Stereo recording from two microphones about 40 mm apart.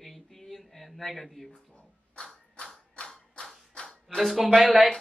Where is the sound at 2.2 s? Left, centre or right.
Left.